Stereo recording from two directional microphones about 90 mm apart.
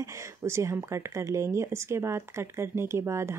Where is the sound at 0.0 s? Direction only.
35° right (ahead or behind).